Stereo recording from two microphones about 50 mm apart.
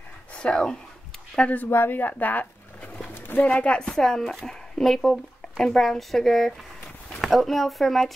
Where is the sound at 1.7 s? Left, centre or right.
Left.